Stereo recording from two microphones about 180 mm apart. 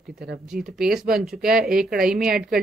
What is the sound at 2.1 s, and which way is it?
Speech, 55° right (ahead or behind).